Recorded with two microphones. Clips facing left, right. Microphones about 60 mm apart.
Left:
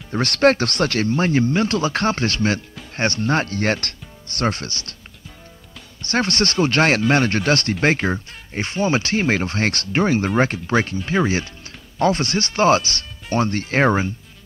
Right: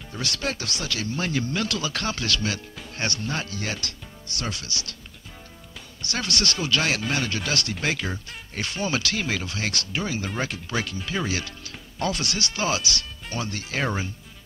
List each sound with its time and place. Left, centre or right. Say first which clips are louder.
0.1 s speech: left 14 dB; left
6.0 s speech: left 7 dB; left